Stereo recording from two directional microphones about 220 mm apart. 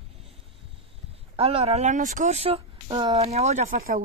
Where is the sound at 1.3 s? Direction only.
25° right (ahead or behind).